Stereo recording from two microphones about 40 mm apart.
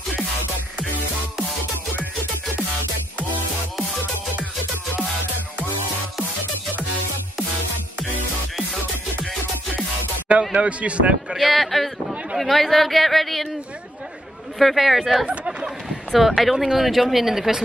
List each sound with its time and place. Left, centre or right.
10.5 s speech: right
11.3 s speech: centre
14.6 s speech: centre
15.2 s a sound: centre
16.2 s speech: centre
16.5 s speech: centre
16.8 s speech: centre